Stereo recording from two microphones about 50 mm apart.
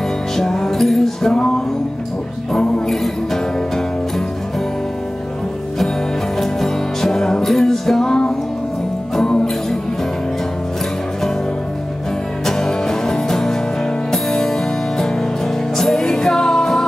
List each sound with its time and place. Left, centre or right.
0.4 s music: centre
2.5 s music: centre
6.4 s music: centre
12.4 s music: centre